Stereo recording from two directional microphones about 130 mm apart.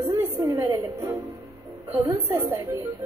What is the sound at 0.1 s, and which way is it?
Music, 25° right (ahead or behind).